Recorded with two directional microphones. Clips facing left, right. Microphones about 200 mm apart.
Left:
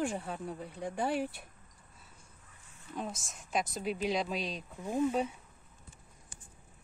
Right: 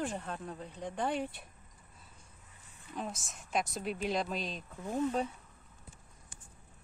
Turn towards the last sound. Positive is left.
turn(degrees=5)  # may be behind; listen again after turning